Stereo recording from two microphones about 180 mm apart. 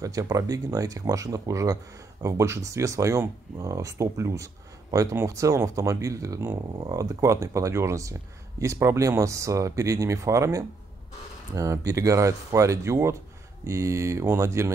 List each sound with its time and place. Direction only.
0.0 s speech: 20° right (ahead or behind)